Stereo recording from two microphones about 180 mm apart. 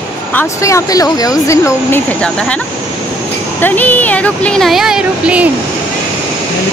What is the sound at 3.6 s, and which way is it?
Speech, 10° left (ahead or behind).